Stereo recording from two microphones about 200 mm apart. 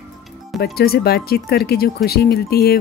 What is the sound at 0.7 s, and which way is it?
Speech, 50° left (ahead or behind).